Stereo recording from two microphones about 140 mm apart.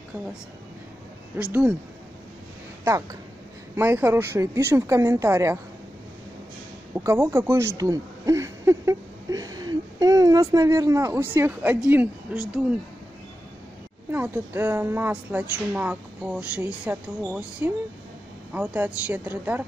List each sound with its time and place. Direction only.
1.4 s a woman's voice: 10° right (ahead or behind)
3.7 s speech: 15° right (ahead or behind)
6.9 s a woman's voice: 20° right (ahead or behind)
14.1 s a woman's voice: 15° right (ahead or behind)